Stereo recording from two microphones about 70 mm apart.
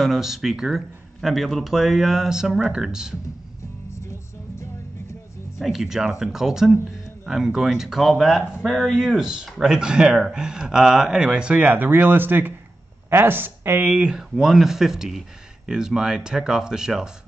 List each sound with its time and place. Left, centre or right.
0.0 s speech: centre
3.9 s music: left
5.6 s speech: centre
11.7 s speech: right
13.8 s speech: centre